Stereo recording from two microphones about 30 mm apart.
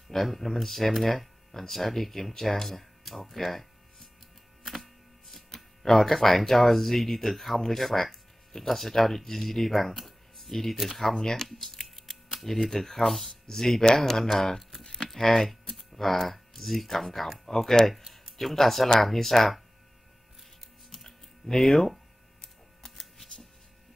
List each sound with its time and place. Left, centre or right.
0.1 s speech: centre
5.5 s speech: centre
11.1 s speech: centre
11.4 s speech: centre
13.5 s speech: centre
15.0 s speech: centre
20.9 s a sound: centre